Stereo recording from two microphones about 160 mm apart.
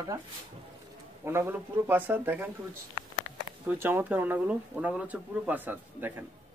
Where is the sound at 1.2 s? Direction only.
15° right (ahead or behind).